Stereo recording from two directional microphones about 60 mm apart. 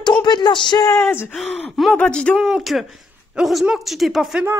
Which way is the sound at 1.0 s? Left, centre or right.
Left.